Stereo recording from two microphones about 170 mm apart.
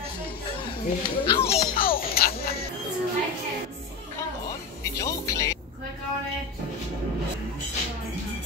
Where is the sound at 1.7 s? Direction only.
60° left (ahead or behind).